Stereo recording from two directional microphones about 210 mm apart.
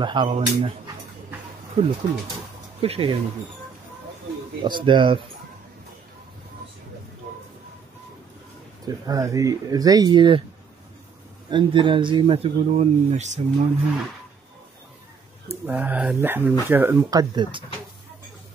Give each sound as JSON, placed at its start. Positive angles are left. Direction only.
{"t": 0.0, "sound": "speech", "side_deg": -25}
{"t": 1.8, "sound": "speech", "side_deg": -30}
{"t": 4.6, "sound": "speech", "side_deg": -20}
{"t": 8.8, "sound": "speech", "side_deg": -15}
{"t": 11.5, "sound": "speech", "side_deg": -25}
{"t": 15.4, "sound": "speech", "side_deg": -10}